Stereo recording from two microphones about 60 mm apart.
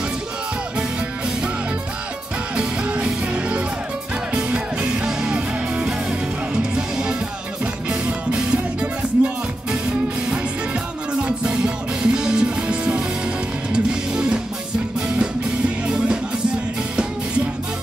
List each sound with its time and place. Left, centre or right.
2.5 s music: centre
8.4 s music: centre